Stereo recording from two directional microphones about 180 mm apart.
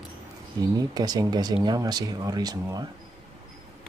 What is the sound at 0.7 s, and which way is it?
Speech, 20° right (ahead or behind).